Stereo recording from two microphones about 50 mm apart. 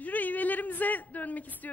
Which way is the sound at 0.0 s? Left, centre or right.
Left.